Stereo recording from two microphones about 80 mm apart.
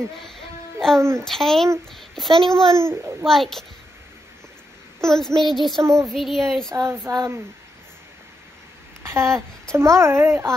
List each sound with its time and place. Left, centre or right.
0.2 s a sound: centre
1.2 s a child's voice: centre
2.7 s a child's voice: right
3.3 s speech: centre
5.0 s speech: centre
6.7 s a child's voice: right
9.0 s a child's voice: right